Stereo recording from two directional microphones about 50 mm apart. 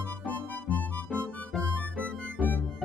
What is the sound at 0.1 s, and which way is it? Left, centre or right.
Music, left.